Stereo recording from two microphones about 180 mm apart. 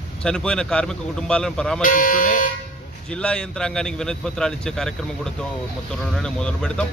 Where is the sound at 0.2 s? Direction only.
5° left (ahead or behind).